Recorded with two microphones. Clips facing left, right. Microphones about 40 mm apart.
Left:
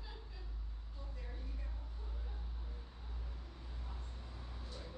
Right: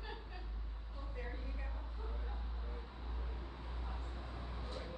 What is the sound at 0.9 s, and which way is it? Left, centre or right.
Vehicle, right.